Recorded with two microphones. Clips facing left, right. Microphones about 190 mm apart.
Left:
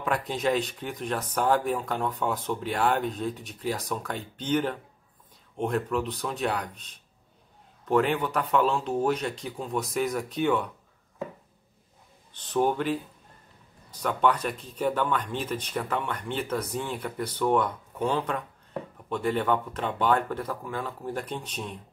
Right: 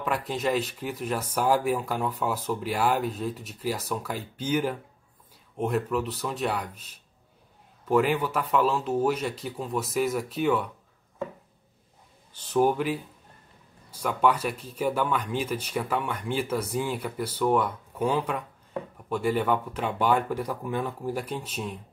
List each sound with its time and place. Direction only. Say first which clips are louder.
0.0 s speech: left 1 dB; centre (ahead or behind)
12.3 s speech: right 2 dB; 10° right (ahead or behind)